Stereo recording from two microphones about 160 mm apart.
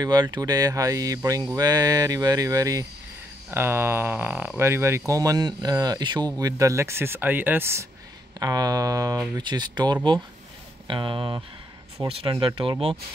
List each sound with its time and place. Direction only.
0.0 s speech: 25° right (ahead or behind)